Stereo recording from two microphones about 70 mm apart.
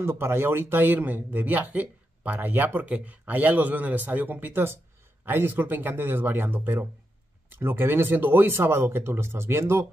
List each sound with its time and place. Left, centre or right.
0.0 s speech: right